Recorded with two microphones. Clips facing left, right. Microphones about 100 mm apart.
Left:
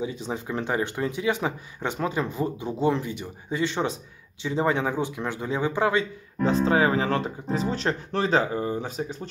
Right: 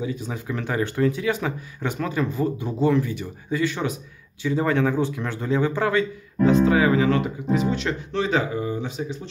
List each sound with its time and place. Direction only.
0.0 s speech: 25° left (ahead or behind)
6.4 s speech: 30° left (ahead or behind)